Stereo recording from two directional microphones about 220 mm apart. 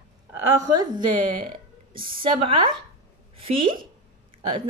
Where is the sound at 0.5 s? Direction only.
15° right (ahead or behind).